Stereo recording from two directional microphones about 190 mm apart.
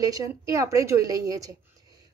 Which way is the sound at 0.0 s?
15° right (ahead or behind).